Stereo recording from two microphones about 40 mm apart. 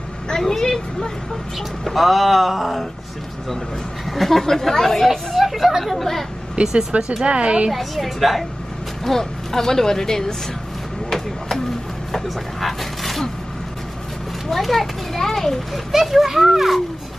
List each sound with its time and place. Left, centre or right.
0.3 s speech: centre
1.9 s speech: centre
4.1 s speech: centre
5.9 s speech: centre
6.5 s a woman's voice: centre
7.7 s speech: centre
11.1 s a sound: centre
12.1 s vehicle: centre
14.5 s speech: centre
15.7 s speech: centre